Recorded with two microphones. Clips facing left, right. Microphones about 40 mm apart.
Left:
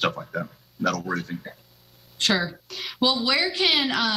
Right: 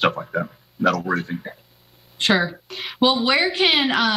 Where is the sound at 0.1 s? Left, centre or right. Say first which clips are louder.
Right 5 dB; right.